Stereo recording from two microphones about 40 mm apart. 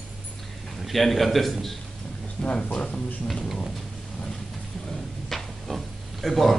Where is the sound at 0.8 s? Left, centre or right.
Centre.